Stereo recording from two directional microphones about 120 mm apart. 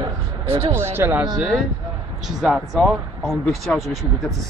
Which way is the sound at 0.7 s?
20° right (ahead or behind).